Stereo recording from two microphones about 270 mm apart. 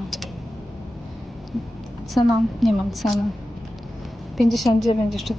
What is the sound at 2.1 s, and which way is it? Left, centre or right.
Speech, centre.